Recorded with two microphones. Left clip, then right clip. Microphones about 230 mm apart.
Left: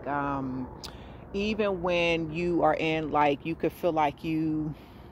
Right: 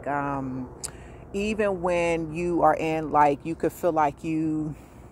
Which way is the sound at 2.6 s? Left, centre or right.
Centre.